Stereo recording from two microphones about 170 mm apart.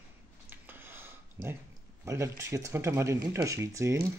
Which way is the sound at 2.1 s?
15° right (ahead or behind).